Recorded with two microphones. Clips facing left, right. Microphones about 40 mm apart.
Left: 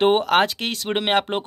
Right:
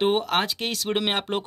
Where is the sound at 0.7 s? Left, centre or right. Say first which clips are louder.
Left 2 dB; left.